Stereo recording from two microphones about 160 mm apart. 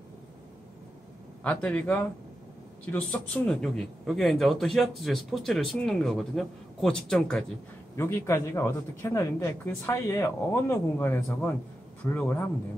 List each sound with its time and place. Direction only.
1.4 s a man's voice: 10° left (ahead or behind)
7.9 s a man's voice: 15° left (ahead or behind)